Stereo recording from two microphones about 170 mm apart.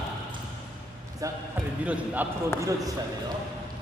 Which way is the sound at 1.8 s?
10° right (ahead or behind).